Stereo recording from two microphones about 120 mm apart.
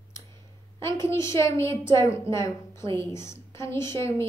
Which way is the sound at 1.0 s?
25° left (ahead or behind).